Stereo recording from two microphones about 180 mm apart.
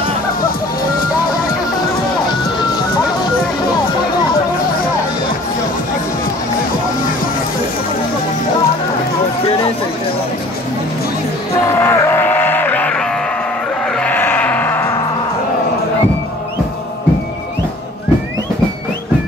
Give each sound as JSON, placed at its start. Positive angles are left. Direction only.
{"t": 11.6, "sound": "music", "side_deg": 15}
{"t": 13.9, "sound": "sheep", "side_deg": 10}